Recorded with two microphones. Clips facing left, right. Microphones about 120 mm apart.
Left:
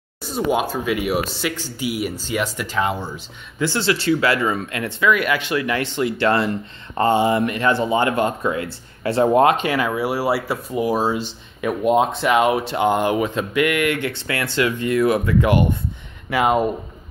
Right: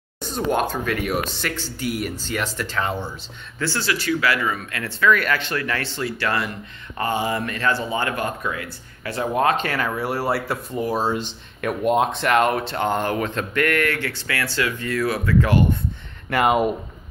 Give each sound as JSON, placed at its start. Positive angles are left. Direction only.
{"t": 0.2, "sound": "speech", "side_deg": 5}
{"t": 9.6, "sound": "speech", "side_deg": 10}
{"t": 16.3, "sound": "speech", "side_deg": 0}